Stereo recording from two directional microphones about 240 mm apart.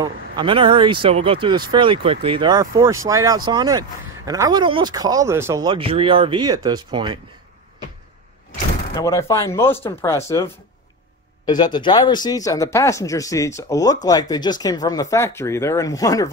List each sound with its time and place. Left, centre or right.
0.0 s speech: centre
8.9 s speech: centre